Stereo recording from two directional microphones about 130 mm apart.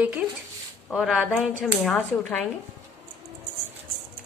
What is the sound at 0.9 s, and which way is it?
Speech, 5° right (ahead or behind).